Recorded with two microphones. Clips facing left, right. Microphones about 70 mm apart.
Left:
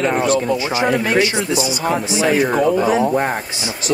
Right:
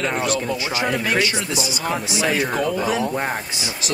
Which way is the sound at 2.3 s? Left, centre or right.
Centre.